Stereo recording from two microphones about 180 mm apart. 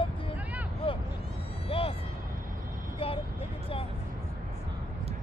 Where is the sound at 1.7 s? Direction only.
30° left (ahead or behind).